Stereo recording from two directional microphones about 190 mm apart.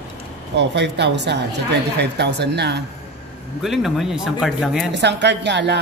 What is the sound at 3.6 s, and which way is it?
Speech, centre (ahead or behind).